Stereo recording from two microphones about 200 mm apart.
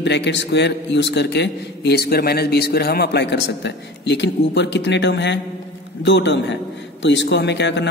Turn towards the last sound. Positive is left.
turn(degrees=60)  # may be behind; listen again after turning